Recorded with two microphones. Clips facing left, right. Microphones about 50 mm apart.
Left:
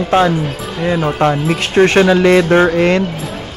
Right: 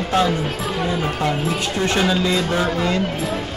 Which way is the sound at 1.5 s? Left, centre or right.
Left.